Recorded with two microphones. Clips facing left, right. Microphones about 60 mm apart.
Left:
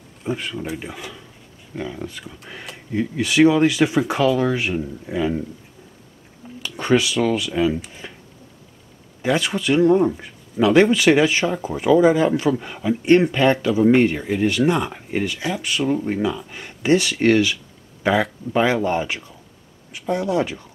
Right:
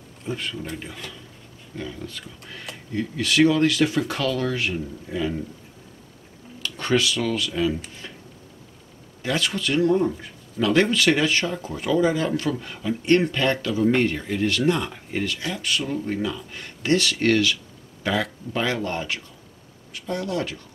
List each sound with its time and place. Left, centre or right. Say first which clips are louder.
0.3 s speech: left 4 dB; centre
6.6 s speech: left 4 dB; centre
8.0 s a sound: left 2 dB; centre
9.2 s speech: left 4 dB; centre